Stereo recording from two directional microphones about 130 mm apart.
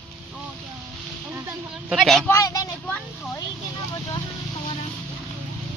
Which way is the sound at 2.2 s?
25° left (ahead or behind).